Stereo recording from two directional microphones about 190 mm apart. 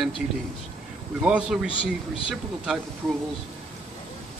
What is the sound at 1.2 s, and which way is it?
Speech, 5° right (ahead or behind).